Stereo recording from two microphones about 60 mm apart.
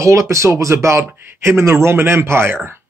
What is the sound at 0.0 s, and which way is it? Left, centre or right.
Speech, right.